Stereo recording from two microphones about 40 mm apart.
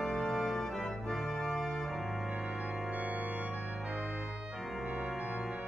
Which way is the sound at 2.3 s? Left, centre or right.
Centre.